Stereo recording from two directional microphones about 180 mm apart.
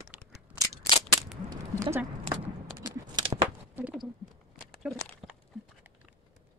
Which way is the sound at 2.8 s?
25° right (ahead or behind).